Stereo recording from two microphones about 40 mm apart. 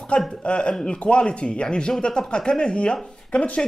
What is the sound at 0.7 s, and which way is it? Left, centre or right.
A man's voice, centre.